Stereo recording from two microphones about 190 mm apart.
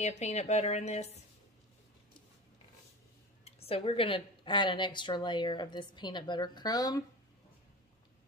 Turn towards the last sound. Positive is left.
turn(degrees=20)  # may be behind; listen again after turning